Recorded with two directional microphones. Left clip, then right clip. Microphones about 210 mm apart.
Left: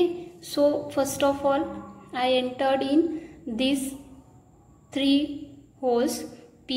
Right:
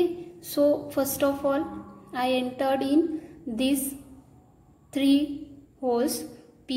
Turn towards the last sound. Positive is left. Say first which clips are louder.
# left 2 dB
turn(degrees=-20)  # may be behind; listen again after turning